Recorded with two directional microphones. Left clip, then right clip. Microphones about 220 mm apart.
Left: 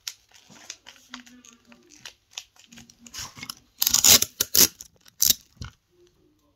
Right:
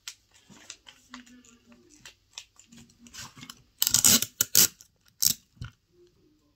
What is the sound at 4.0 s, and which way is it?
Scissors, 40° left (ahead or behind).